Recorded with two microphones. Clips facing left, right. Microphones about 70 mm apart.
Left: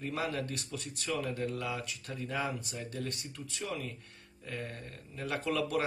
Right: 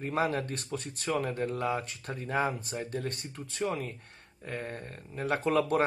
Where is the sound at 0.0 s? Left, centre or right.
Right.